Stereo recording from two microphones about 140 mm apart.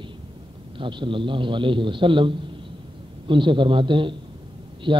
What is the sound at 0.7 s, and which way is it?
A man's voice, 35° right (ahead or behind).